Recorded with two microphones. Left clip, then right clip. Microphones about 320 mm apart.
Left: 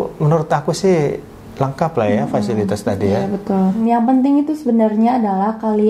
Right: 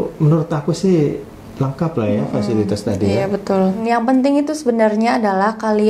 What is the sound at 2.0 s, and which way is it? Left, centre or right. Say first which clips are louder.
Speech: left 2 dB; left.